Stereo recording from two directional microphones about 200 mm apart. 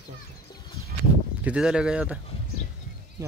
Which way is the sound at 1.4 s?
5° right (ahead or behind).